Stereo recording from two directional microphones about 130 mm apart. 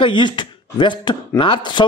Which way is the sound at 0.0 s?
40° left (ahead or behind).